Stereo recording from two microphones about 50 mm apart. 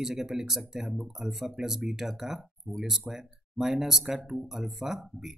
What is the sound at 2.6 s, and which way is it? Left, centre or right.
Speech, right.